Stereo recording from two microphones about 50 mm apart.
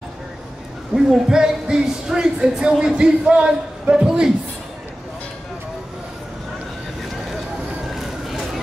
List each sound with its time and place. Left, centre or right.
0.9 s speech: centre
3.9 s speech: centre
7.9 s a sound: centre